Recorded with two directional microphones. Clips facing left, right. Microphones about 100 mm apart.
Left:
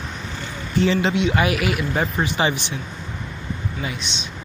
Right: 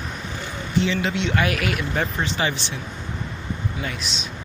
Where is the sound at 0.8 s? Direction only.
45° left (ahead or behind).